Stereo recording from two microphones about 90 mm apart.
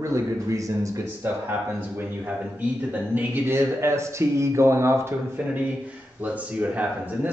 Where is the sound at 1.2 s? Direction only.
20° right (ahead or behind).